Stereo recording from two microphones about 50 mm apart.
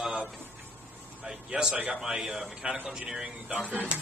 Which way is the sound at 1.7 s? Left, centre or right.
Right.